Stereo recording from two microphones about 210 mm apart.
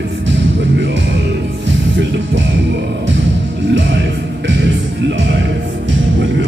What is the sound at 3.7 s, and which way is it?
Music, 60° right (ahead or behind).